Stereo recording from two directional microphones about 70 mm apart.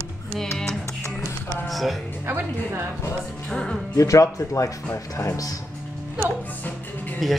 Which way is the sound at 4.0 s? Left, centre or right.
Left.